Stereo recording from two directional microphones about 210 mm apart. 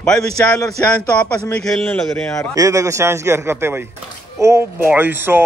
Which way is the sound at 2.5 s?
15° right (ahead or behind).